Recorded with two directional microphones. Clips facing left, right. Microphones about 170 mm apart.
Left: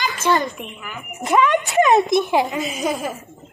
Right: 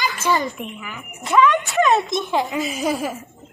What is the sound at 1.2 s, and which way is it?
Speech, 45° left (ahead or behind).